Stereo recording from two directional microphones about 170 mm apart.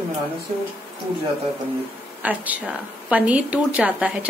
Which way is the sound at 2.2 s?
10° right (ahead or behind).